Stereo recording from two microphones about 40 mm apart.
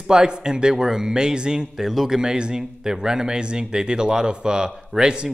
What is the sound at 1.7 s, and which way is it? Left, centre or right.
Speech, centre.